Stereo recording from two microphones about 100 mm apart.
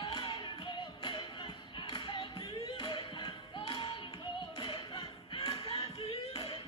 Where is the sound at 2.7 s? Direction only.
50° left (ahead or behind).